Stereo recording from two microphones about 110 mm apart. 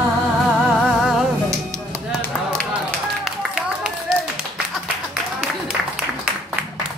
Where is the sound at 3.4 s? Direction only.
5° right (ahead or behind).